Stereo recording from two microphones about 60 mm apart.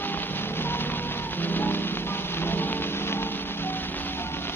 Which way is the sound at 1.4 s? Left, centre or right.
Left.